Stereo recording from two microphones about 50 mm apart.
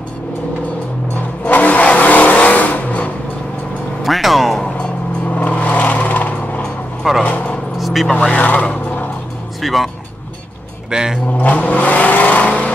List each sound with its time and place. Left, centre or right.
1.4 s vehicle: left
4.0 s vehicle: centre
4.7 s vehicle: left
7.2 s a sound: left
7.8 s vehicle: centre
8.1 s speech: centre
8.4 s a sound: left
9.6 s music: centre
10.9 s speech: centre
11.3 s vehicle: left